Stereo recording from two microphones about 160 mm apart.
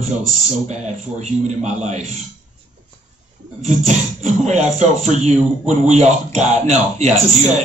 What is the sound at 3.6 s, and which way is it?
A man's voice, 45° right (ahead or behind).